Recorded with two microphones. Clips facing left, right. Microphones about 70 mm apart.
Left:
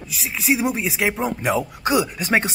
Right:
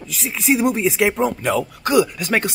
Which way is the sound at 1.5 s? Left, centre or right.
Centre.